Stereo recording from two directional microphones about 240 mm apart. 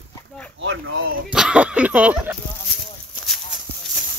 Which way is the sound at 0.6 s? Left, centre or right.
Right.